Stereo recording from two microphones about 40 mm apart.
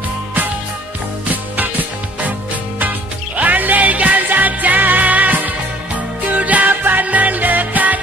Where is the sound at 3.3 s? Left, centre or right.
Right.